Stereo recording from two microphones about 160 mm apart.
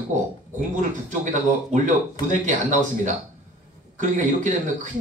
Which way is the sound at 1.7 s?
50° right (ahead or behind).